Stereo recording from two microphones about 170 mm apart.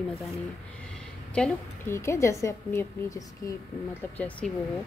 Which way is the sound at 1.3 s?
5° left (ahead or behind).